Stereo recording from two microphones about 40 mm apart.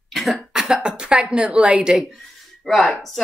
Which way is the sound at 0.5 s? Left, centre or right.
Centre.